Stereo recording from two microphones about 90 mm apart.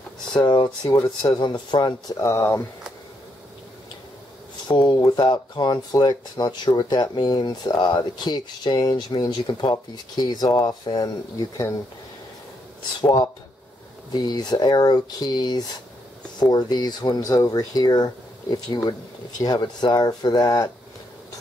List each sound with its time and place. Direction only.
0.3 s speech: 55° left (ahead or behind)
2.2 s speech: 35° left (ahead or behind)
4.6 s speech: 55° left (ahead or behind)
13.0 s speech: 50° left (ahead or behind)